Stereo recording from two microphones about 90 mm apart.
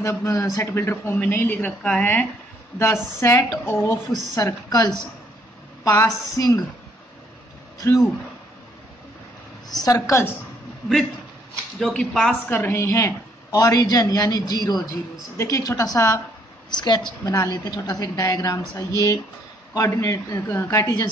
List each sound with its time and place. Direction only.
0.0 s a man's voice: 30° left (ahead or behind); by 2.0 s 10° left (ahead or behind)
2.8 s a man's voice: 30° left (ahead or behind)
4.4 s a woman's voice: 40° left (ahead or behind)
7.8 s a man's voice: 35° left (ahead or behind)
9.8 s a man's voice: 40° left (ahead or behind)
11.8 s speech: 5° left (ahead or behind)
12.4 s a woman's voice: 25° left (ahead or behind)
12.8 s a man's voice: 35° left (ahead or behind)
15.3 s a man's voice: 40° left (ahead or behind)
16.7 s a woman's voice: 55° left (ahead or behind)
19.9 s a man's voice: 30° left (ahead or behind)